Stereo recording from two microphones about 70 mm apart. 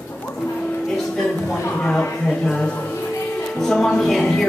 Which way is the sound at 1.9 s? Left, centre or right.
Centre.